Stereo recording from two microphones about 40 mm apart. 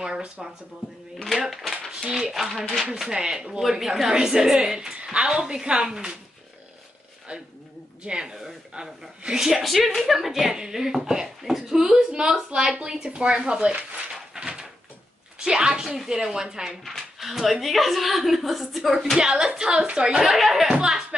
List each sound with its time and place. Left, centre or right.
0.0 s speech: centre
1.1 s speech: centre
1.9 s a woman's voice: centre
3.1 s a woman's voice: centre
5.4 s a woman's voice: centre
7.3 s speech: right
9.4 s a woman's voice: centre; by 13.7 s right
14.3 s door: centre
15.3 s a woman's voice: centre
16.8 s speech: centre
19.1 s a woman's voice: centre
20.2 s speech: centre